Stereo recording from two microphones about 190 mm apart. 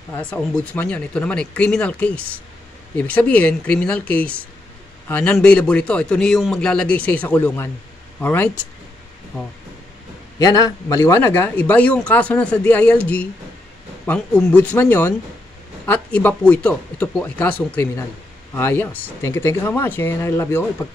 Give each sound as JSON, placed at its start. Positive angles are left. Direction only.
{"t": 0.2, "sound": "speech", "side_deg": 5}
{"t": 10.4, "sound": "speech", "side_deg": 20}